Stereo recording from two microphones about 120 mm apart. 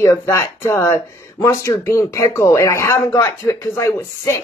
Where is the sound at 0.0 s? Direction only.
25° left (ahead or behind).